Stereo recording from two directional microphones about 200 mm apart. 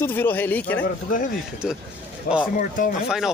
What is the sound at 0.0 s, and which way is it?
Speech, 10° left (ahead or behind).